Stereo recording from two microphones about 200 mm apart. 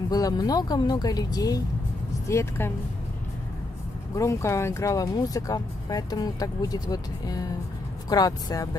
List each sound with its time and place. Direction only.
0.1 s speech: 20° left (ahead or behind)
4.1 s speech: 15° left (ahead or behind)